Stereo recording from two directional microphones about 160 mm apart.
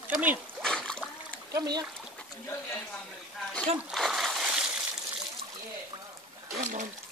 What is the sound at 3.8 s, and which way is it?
Splash, centre (ahead or behind).